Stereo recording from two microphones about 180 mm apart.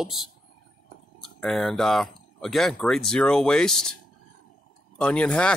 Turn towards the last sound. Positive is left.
turn(degrees=5)  # may be behind; listen again after turning